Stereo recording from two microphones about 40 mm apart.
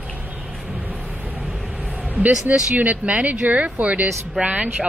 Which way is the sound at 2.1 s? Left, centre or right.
Right.